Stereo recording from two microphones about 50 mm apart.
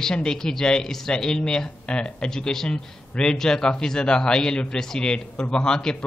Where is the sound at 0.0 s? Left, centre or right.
Centre.